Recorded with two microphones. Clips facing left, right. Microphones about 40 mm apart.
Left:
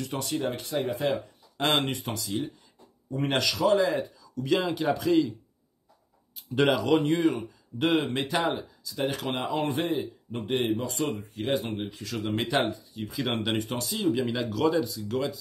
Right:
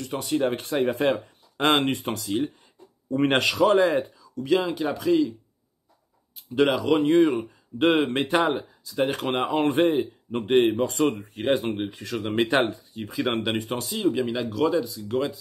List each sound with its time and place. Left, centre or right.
0.4 s speech: right
4.4 s speech: centre
6.3 s speech: centre
7.1 s speech: right
11.9 s speech: right
12.9 s speech: right
13.2 s speech: centre
15.0 s speech: centre